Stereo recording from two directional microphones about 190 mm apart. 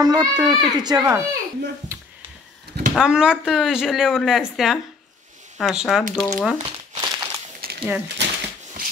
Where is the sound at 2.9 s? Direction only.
5° right (ahead or behind).